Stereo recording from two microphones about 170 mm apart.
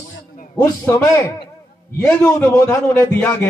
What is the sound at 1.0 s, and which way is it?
A man's voice, 20° left (ahead or behind).